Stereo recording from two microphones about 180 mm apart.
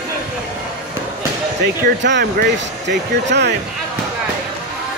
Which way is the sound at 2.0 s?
80° right.